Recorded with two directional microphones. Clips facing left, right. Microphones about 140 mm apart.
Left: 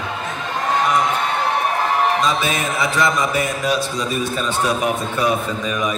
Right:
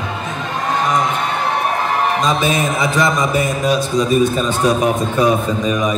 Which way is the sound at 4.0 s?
45° right (ahead or behind).